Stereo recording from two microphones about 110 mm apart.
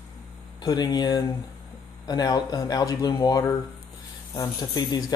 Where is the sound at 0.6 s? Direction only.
40° left (ahead or behind).